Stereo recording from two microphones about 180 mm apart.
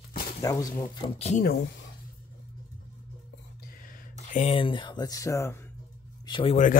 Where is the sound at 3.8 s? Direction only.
45° left (ahead or behind); by 5.6 s 15° left (ahead or behind).